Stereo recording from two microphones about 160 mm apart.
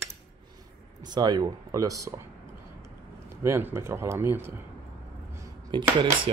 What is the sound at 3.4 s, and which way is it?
Speech, 15° right (ahead or behind).